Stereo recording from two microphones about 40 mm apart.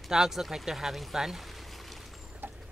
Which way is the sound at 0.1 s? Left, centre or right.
Centre.